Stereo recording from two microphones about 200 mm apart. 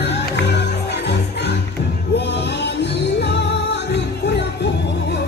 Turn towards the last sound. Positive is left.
turn(degrees=55)  # may be behind; listen again after turning